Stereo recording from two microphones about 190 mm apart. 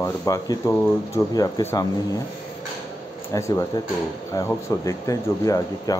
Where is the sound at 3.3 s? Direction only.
15° left (ahead or behind).